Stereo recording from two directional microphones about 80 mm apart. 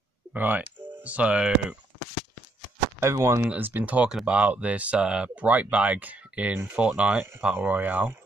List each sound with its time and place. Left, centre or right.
0.3 s speech: right
3.0 s speech: right
3.4 s speech: right